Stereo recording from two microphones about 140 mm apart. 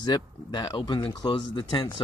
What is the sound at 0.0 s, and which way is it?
Speech, 30° left (ahead or behind).